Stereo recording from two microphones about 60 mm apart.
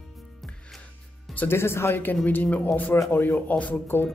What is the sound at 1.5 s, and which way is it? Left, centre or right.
A man's voice, left.